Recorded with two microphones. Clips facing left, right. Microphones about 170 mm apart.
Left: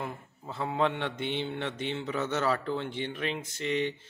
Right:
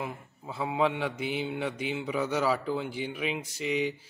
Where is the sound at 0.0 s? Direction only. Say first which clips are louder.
Right 1 dB; 5° right (ahead or behind).